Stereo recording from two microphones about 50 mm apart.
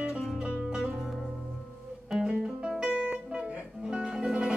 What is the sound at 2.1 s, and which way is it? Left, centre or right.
Music, centre.